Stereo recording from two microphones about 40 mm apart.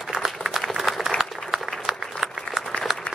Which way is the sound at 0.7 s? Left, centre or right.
Centre.